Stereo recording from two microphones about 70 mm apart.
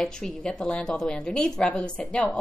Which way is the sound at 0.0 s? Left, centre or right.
Centre.